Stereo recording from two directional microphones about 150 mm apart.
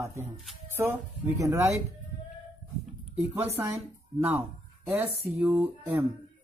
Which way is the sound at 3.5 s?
20° right (ahead or behind).